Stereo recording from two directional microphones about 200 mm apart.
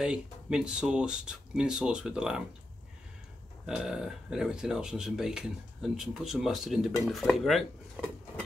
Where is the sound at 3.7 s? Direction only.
5° right (ahead or behind).